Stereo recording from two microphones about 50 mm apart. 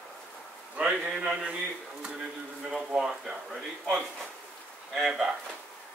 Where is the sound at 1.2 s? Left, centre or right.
Centre.